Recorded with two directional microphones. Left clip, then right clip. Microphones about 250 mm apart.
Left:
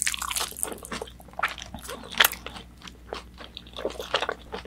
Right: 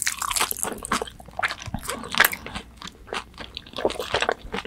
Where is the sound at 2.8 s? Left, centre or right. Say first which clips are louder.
Right 6 dB; right.